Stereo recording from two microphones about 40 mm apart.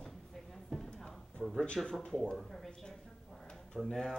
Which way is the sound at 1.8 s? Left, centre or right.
Right.